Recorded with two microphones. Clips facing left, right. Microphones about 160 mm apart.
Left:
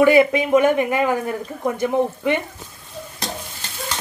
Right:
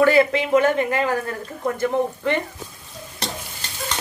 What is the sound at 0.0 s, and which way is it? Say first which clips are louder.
Speech: left 2 dB; 15° left (ahead or behind).